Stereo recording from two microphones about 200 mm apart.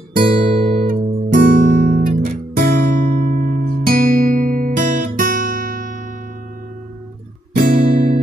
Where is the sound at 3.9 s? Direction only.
45° right (ahead or behind).